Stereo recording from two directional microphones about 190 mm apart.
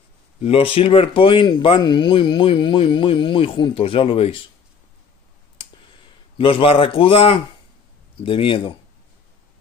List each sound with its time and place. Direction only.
0.4 s speech: 30° left (ahead or behind)
6.3 s speech: 30° left (ahead or behind)